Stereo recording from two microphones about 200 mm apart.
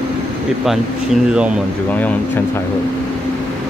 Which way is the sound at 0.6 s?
Centre (ahead or behind).